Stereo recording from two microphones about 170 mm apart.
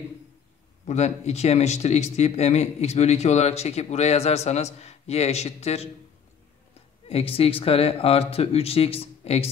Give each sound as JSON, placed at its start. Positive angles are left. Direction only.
{"t": 0.8, "sound": "speech", "side_deg": 40}
{"t": 7.1, "sound": "speech", "side_deg": 35}